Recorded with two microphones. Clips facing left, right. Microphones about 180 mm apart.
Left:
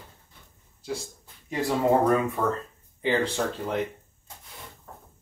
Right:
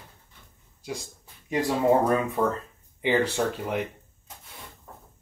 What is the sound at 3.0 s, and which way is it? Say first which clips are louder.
Speech: right 1 dB; 10° right (ahead or behind).